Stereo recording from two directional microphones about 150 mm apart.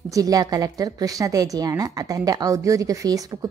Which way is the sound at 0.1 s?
25° right (ahead or behind).